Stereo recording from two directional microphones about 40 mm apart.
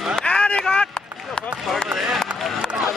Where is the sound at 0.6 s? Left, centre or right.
Centre.